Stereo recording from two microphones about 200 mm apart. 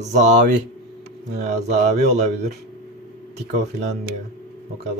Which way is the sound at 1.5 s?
35° right (ahead or behind).